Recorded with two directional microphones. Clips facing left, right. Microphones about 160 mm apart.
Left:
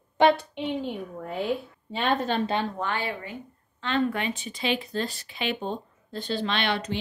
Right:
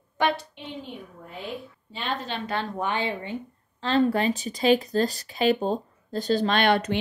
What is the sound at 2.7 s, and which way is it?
Speech, 20° right (ahead or behind).